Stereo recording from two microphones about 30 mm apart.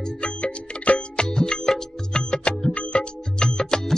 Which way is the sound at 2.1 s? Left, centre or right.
Left.